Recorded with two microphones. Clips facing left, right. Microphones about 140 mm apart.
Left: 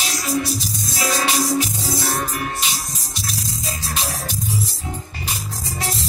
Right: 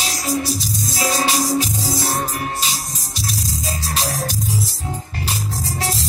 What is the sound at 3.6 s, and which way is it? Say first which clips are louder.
Music: right 3 dB; 35° right (ahead or behind).